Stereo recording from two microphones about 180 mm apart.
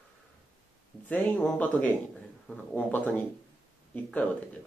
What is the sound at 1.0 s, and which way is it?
Speech, 10° left (ahead or behind).